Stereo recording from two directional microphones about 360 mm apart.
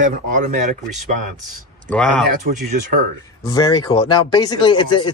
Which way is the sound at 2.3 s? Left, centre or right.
Right.